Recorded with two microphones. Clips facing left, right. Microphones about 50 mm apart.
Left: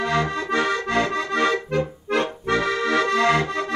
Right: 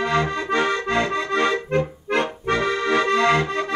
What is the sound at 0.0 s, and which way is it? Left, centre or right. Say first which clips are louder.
Accordion: right 1 dB; right.